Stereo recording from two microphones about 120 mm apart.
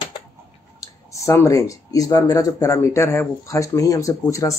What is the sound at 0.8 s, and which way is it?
Speech, 25° left (ahead or behind).